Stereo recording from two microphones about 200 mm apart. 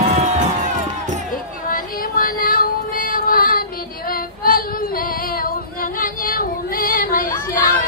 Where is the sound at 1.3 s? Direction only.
45° left (ahead or behind).